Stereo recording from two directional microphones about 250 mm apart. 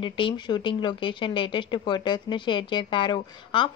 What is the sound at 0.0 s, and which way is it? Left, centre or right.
Speech, centre.